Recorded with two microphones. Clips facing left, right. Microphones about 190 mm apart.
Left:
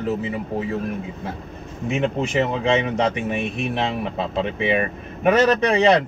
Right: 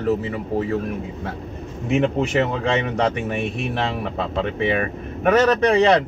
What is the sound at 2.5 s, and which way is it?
Speech, 15° left (ahead or behind).